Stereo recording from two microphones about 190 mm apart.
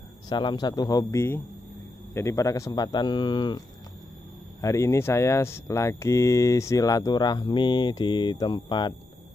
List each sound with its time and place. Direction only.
0.3 s speech: 25° left (ahead or behind)